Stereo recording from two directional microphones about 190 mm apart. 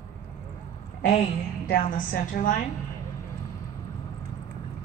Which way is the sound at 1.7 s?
45° left (ahead or behind).